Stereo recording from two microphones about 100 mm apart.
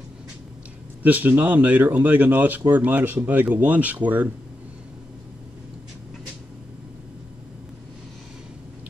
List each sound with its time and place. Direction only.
1.0 s speech: 15° right (ahead or behind)